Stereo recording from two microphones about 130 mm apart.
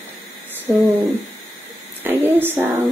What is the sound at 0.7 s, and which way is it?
Speech, 15° right (ahead or behind).